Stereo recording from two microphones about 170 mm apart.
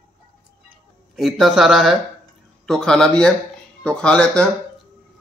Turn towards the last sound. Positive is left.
turn(degrees=5)  # may be behind; listen again after turning